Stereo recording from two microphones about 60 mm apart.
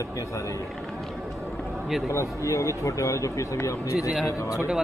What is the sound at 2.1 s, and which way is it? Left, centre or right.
A man's voice, left.